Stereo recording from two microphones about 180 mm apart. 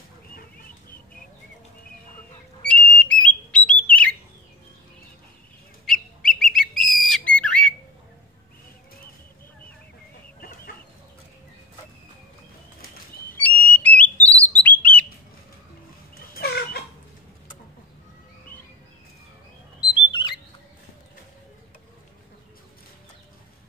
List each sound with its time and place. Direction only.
0.4 s a sound: 55° left (ahead or behind)
2.7 s whistle: 5° left (ahead or behind)
5.9 s bird: centre (ahead or behind)
13.7 s whistle: 10° left (ahead or behind)
14.1 s bird: 10° left (ahead or behind)
16.2 s chicken: 60° left (ahead or behind)
19.9 s bird: 25° left (ahead or behind)